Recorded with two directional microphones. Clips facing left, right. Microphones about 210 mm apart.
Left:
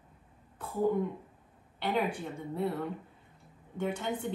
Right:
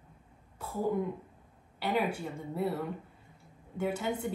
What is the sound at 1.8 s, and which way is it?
Speech, 5° right (ahead or behind).